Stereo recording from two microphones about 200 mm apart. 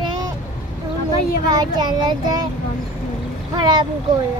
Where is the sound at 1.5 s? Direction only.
20° right (ahead or behind).